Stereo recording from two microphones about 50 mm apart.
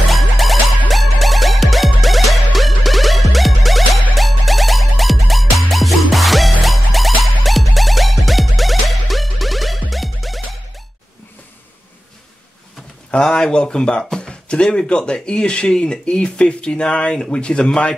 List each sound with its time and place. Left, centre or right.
0.1 s music: centre
13.2 s speech: centre